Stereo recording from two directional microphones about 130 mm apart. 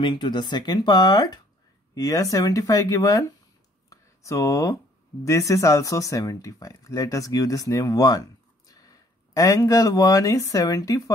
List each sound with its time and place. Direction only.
0.0 s speech: 35° left (ahead or behind)
3.9 s a sound: 25° left (ahead or behind)
5.2 s speech: 25° left (ahead or behind)